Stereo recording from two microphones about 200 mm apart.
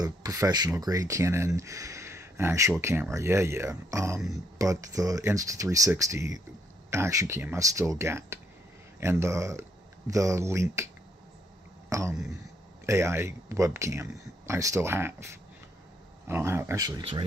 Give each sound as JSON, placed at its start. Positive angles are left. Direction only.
{"t": 0.0, "sound": "speech", "side_deg": -20}
{"t": 11.9, "sound": "speech", "side_deg": -15}
{"t": 16.3, "sound": "speech", "side_deg": -15}